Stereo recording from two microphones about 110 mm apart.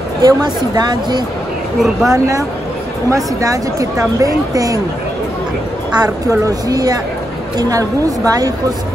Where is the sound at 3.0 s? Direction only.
30° right (ahead or behind).